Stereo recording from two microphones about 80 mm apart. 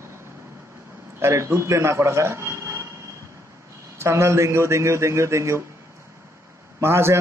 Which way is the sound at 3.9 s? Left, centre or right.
Right.